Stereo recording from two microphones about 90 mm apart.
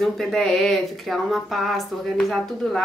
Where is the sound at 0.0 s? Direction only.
5° left (ahead or behind).